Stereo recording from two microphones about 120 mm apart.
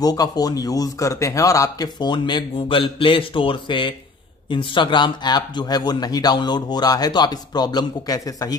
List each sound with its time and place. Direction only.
0.0 s a man's voice: 30° left (ahead or behind)